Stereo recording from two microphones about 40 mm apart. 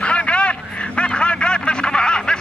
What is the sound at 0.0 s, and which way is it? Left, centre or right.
Vehicle, left.